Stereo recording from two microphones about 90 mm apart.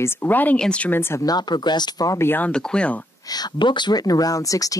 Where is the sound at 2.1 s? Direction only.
25° left (ahead or behind).